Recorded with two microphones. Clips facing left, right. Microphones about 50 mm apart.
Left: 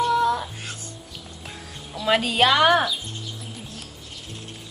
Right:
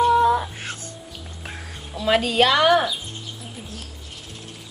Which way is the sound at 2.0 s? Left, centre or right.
Centre.